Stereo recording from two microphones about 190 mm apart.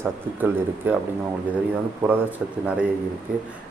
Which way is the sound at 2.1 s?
10° right (ahead or behind).